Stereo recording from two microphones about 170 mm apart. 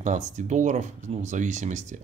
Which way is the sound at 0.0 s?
45° right (ahead or behind).